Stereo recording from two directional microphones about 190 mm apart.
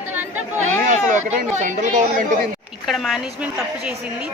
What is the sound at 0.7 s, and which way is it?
Speech, 40° right (ahead or behind).